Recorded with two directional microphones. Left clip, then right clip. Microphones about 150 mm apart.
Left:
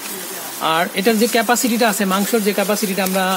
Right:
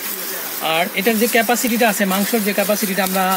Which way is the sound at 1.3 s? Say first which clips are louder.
Even; 20° left (ahead or behind).